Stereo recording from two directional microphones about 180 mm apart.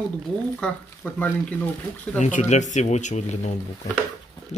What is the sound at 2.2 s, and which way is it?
Speech, 40° left (ahead or behind).